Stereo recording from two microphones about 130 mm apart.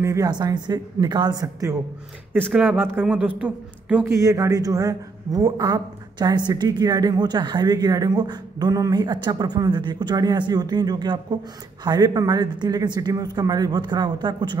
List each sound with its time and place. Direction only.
0.0 s speech: 25° right (ahead or behind)
2.3 s a man's voice: 5° right (ahead or behind)
4.0 s speech: 25° right (ahead or behind)